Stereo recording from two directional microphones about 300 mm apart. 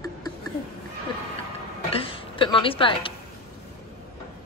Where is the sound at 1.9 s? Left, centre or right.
Centre.